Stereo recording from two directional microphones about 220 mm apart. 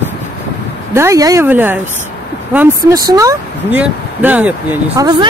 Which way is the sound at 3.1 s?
15° right (ahead or behind).